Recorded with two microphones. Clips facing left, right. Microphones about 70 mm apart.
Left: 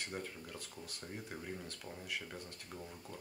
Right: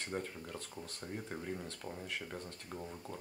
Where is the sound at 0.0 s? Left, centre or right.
Centre.